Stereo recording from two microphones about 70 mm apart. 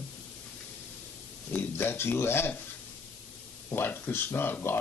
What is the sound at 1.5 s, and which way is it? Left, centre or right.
Speech, left.